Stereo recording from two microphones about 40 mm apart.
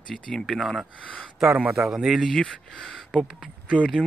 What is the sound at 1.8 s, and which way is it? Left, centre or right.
Speech, centre.